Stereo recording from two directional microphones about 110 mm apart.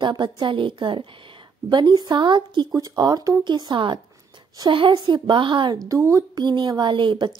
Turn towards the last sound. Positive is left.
turn(degrees=-45)  # may be behind; listen again after turning